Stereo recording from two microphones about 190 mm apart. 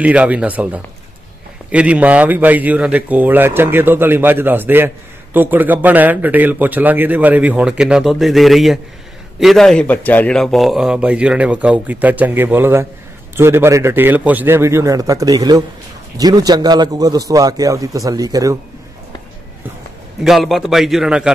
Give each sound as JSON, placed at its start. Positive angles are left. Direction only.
{"t": 0.0, "sound": "a man's voice", "side_deg": -5}
{"t": 20.2, "sound": "a man's voice", "side_deg": 0}